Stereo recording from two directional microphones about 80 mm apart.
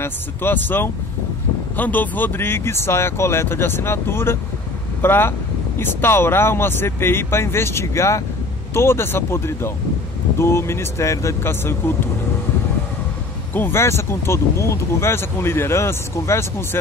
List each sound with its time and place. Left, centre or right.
0.0 s speech: left
13.5 s speech: left